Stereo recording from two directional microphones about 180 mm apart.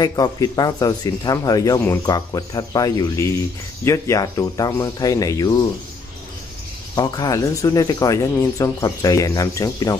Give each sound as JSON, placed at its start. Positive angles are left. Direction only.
{"t": 0.0, "sound": "speech", "side_deg": 20}
{"t": 7.0, "sound": "speech", "side_deg": 20}